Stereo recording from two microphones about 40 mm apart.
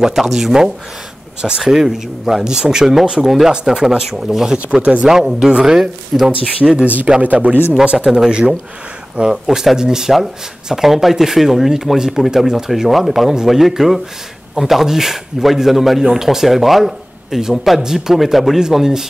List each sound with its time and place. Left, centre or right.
0.0 s a man's voice: centre
3.2 s a man's voice: centre
3.4 s a man's voice: centre
7.2 s a man's voice: right; by 19.0 s centre